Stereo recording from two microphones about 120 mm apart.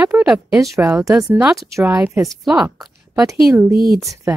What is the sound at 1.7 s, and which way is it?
Speech, 25° right (ahead or behind).